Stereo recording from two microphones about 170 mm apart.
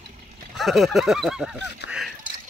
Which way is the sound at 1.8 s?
90° left.